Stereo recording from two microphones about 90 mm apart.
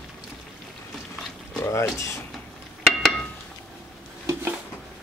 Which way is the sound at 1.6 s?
30° left (ahead or behind).